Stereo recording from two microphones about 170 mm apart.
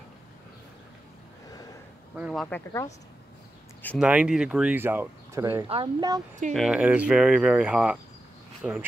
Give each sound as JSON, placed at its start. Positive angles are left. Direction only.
{"t": 2.3, "sound": "speech", "side_deg": 10}
{"t": 4.0, "sound": "speech", "side_deg": -5}
{"t": 5.7, "sound": "speech", "side_deg": -30}
{"t": 6.5, "sound": "speech", "side_deg": -5}